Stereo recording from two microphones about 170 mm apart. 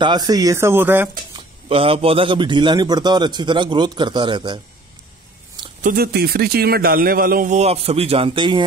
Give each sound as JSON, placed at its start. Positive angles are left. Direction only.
{"t": 0.0, "sound": "speech", "side_deg": -25}
{"t": 1.7, "sound": "a man's voice", "side_deg": -35}
{"t": 5.8, "sound": "a man's voice", "side_deg": -55}